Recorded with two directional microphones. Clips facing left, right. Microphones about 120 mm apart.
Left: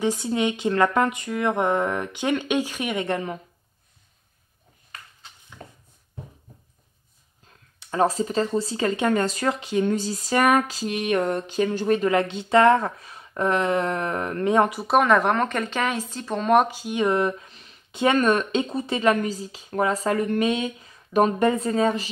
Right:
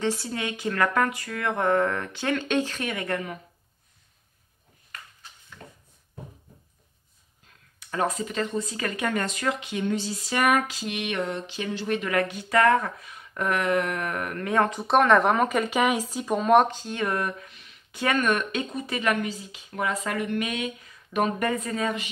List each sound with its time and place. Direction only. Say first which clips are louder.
0.0 s speech: left 5 dB; 15° left (ahead or behind)
7.8 s speech: left 5 dB; 30° left (ahead or behind)
14.7 s speech: left 1 dB; 5° left (ahead or behind); by 22.0 s 30° left (ahead or behind)